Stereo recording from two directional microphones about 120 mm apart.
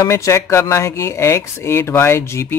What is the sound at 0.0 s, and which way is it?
Speech, 25° left (ahead or behind).